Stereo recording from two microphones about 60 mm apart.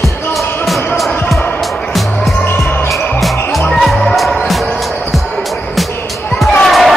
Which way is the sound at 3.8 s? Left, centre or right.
Centre.